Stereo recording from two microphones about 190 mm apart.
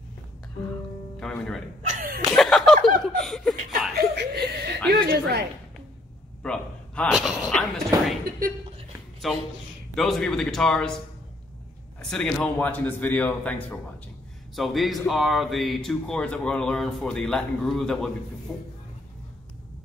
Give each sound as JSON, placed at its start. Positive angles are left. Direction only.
{"t": 1.2, "sound": "music", "side_deg": 5}
{"t": 2.3, "sound": "chuckle", "side_deg": 0}
{"t": 4.1, "sound": "chuckle", "side_deg": -60}
{"t": 5.0, "sound": "a woman's voice", "side_deg": -60}
{"t": 6.4, "sound": "speech", "side_deg": 5}
{"t": 9.2, "sound": "speech", "side_deg": 0}
{"t": 12.0, "sound": "a man's voice", "side_deg": 5}